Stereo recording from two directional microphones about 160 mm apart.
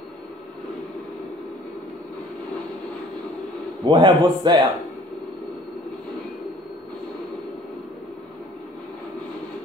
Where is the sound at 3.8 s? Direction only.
25° right (ahead or behind).